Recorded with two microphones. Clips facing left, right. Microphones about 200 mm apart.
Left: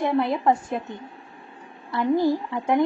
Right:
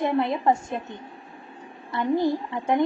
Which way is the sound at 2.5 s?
Centre (ahead or behind).